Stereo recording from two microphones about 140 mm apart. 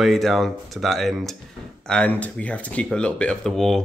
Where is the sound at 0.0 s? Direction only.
Centre (ahead or behind).